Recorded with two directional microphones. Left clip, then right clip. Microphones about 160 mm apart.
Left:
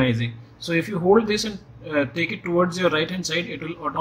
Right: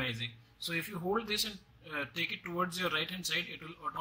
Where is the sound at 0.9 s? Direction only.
15° right (ahead or behind).